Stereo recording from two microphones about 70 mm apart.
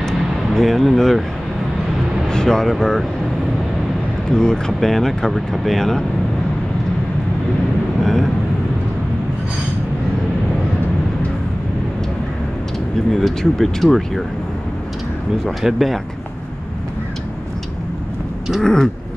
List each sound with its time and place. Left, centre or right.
0.6 s speech: centre
2.2 s speech: centre
4.3 s speech: centre
8.0 s speech: centre
13.1 s speech: centre
15.6 s speech: centre
18.6 s a sound: centre